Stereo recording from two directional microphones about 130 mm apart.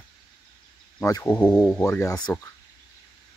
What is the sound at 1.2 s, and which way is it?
Speech, 10° left (ahead or behind).